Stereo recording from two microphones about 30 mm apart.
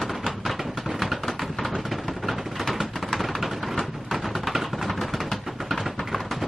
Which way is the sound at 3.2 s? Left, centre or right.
Centre.